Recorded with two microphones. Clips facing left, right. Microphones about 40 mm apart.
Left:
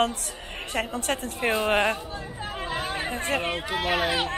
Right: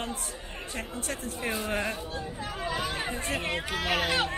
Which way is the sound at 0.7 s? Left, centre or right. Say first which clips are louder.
Left 9 dB; left.